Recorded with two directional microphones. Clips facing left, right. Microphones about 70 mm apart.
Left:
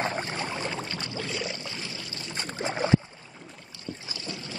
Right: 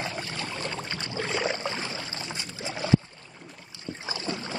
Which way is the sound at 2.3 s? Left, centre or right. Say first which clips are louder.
Left 9 dB; left.